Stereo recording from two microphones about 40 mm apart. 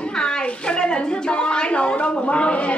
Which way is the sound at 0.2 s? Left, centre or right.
Left.